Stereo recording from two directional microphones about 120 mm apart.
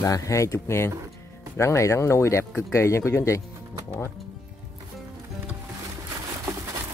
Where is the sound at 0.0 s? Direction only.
25° left (ahead or behind).